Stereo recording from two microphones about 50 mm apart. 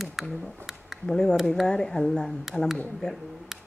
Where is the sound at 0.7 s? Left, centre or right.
Centre.